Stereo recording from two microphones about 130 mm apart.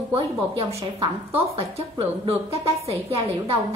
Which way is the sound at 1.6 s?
50° right (ahead or behind).